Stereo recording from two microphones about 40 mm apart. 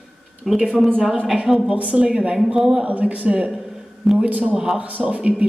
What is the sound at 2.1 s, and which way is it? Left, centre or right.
Speech, centre.